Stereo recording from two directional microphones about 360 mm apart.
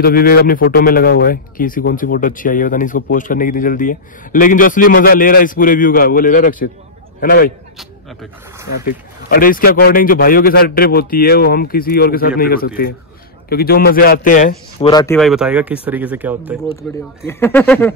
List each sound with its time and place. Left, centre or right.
0.0 s a man's voice: left
7.7 s a sound: centre
8.6 s a man's voice: left; by 16.5 s centre
17.3 s speech: centre